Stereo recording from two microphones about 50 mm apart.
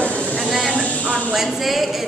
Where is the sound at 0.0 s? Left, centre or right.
Left.